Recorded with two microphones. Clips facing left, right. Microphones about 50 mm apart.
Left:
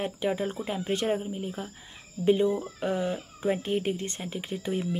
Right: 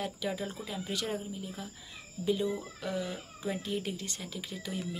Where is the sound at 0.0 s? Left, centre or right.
Left.